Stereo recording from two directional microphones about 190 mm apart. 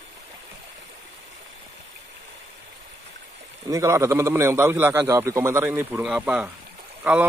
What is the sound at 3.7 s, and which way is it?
Speech, 15° right (ahead or behind).